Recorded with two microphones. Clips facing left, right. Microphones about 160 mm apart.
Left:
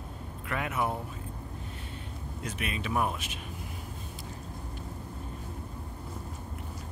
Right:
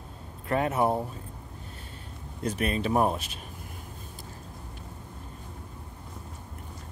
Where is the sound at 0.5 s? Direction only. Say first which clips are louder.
Right 7 dB; 35° right (ahead or behind).